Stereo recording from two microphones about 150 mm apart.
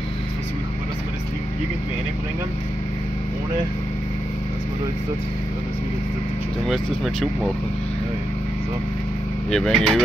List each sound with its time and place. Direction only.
6.7 s speech: centre (ahead or behind)
9.5 s speech: 5° left (ahead or behind)